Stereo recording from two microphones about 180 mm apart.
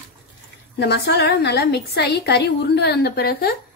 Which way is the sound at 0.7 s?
65° left (ahead or behind).